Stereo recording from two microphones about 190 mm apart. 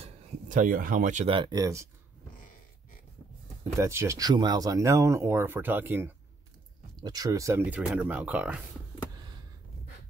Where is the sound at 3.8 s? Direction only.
15° right (ahead or behind).